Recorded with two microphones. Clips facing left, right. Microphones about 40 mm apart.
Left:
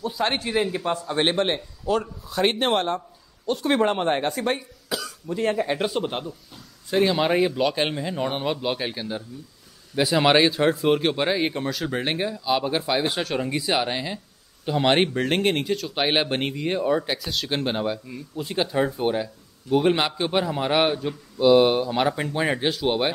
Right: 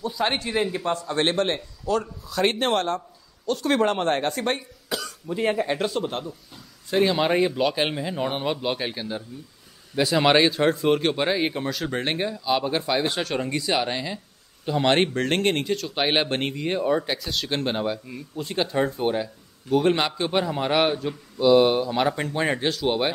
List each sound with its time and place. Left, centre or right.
0.2 s a man's voice: centre
5.3 s speech: centre
5.6 s speech: centre
5.9 s a man's voice: centre
6.2 s a man's voice: centre